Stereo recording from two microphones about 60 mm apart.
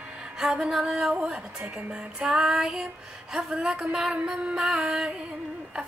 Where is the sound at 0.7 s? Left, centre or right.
Centre.